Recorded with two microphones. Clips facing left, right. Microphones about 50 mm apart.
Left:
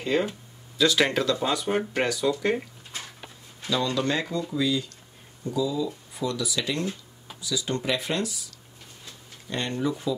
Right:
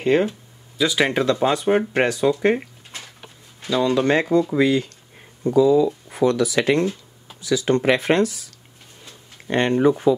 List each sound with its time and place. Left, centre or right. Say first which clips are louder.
0.1 s speech: right 4 dB; right
0.7 s speech: right 2 dB; centre
1.2 s speech: right 7 dB; right
9.5 s speech: right 11 dB; right